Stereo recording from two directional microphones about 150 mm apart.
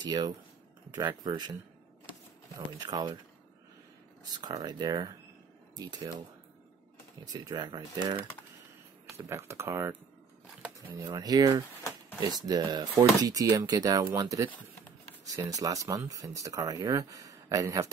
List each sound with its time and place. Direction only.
0.0 s speech: 30° right (ahead or behind)
4.3 s speech: 25° right (ahead or behind)
7.3 s speech: 30° right (ahead or behind)
9.1 s speech: 20° right (ahead or behind)
11.1 s speech: 25° right (ahead or behind)